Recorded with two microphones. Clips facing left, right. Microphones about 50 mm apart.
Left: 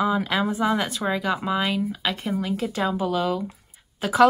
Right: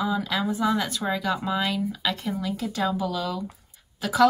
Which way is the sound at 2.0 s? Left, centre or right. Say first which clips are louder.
Left 2 dB; left.